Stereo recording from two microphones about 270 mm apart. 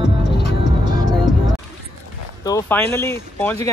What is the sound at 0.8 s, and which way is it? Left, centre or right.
Music, centre.